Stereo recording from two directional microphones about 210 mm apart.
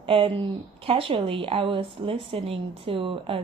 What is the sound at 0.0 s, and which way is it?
Speech, 25° right (ahead or behind).